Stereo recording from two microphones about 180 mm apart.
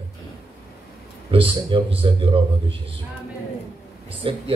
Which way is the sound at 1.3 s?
30° right (ahead or behind).